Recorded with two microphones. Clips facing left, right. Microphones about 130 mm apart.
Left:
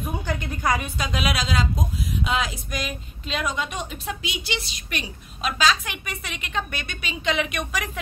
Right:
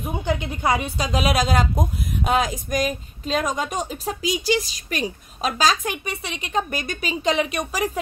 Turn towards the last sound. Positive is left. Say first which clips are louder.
# right 4 dB
turn(degrees=-35)  # may be behind; listen again after turning